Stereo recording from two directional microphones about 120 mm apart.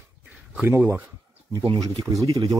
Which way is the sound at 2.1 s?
30° right (ahead or behind).